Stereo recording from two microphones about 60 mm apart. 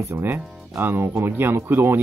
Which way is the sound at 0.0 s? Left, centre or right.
Right.